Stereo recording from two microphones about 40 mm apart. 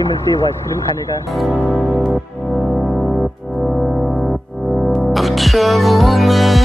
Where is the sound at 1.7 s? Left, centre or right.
Centre.